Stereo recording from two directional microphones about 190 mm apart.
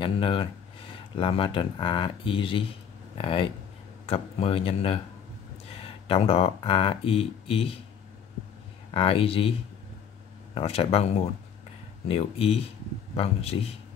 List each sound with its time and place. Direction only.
0.0 s speech: 25° left (ahead or behind)
8.9 s speech: 30° left (ahead or behind)